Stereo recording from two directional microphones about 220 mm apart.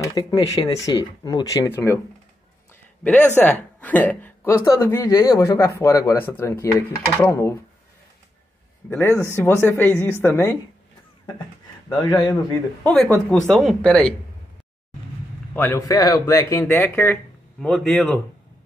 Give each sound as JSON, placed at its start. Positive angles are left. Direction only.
{"t": 0.0, "sound": "speech", "side_deg": 20}
{"t": 3.0, "sound": "speech", "side_deg": 5}
{"t": 8.9, "sound": "speech", "side_deg": 10}
{"t": 11.9, "sound": "speech", "side_deg": 20}
{"t": 12.8, "sound": "speech", "side_deg": 5}
{"t": 15.5, "sound": "speech", "side_deg": 10}